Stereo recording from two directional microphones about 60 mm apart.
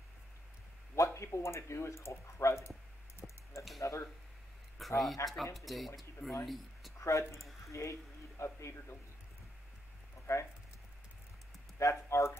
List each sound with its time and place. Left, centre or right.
0.9 s speech: left
3.2 s a sound: centre
3.8 s speech: left
4.7 s a sound: centre
5.3 s speech: centre
7.0 s speech: left
10.3 s speech: left
11.8 s speech: left